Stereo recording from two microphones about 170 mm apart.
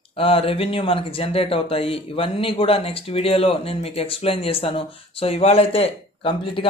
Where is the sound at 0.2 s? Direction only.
35° left (ahead or behind).